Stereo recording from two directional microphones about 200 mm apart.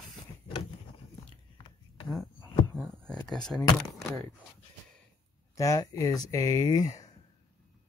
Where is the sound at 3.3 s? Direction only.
Centre (ahead or behind).